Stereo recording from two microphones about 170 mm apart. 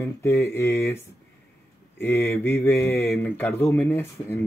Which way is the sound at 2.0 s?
15° left (ahead or behind).